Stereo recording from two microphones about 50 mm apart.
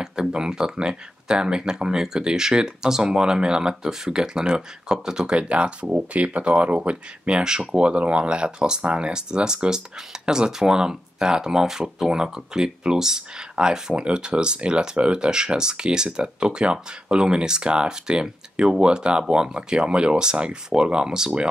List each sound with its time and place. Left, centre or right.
0.0 s speech: centre